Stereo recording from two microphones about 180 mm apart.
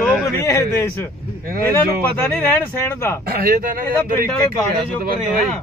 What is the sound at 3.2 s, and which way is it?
Speech, 55° right (ahead or behind).